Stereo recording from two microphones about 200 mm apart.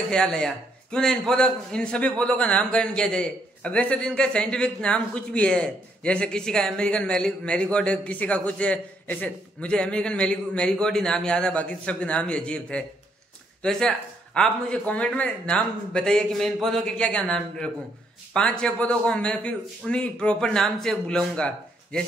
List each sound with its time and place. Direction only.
0.1 s a man's voice: 5° left (ahead or behind)